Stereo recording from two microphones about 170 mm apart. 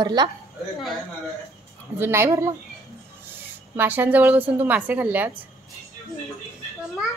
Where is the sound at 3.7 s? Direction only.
10° right (ahead or behind).